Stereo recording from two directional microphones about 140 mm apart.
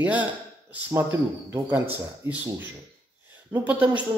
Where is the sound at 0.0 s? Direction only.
10° right (ahead or behind).